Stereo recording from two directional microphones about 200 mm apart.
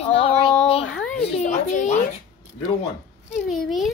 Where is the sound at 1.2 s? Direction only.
35° left (ahead or behind).